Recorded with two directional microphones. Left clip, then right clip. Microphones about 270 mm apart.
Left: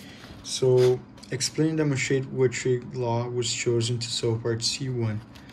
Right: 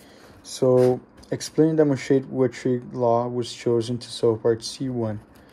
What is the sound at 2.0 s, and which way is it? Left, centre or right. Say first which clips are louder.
Speech: right 3 dB; centre.